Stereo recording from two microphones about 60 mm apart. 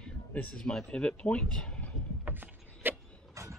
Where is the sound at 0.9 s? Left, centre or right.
Centre.